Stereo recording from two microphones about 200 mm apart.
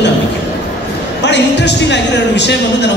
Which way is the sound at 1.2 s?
60° left (ahead or behind).